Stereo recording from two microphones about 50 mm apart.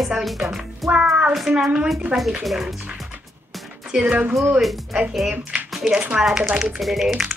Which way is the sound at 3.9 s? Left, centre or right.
Centre.